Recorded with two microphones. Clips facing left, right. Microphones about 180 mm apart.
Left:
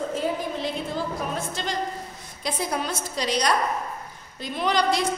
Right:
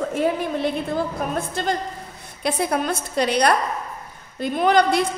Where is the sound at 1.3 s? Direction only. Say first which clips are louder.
Right 5 dB; 55° right (ahead or behind).